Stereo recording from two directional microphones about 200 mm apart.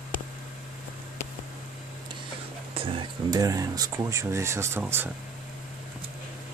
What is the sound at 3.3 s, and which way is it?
Speech, 15° right (ahead or behind).